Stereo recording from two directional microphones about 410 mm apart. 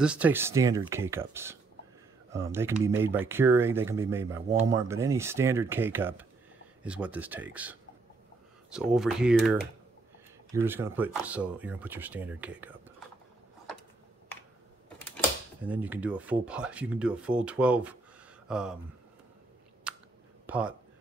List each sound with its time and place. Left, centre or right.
0.0 s speech: centre
8.7 s speech: centre
15.0 s speech: centre
19.9 s chewing: centre
20.4 s speech: centre